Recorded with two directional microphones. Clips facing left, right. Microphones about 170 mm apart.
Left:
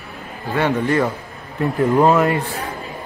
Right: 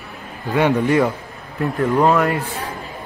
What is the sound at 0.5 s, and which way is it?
Speech, 15° right (ahead or behind).